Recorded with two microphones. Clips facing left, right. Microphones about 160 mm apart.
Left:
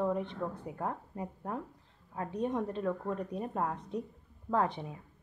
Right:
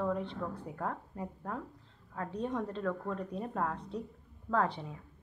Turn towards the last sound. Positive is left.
turn(degrees=20)  # may be behind; listen again after turning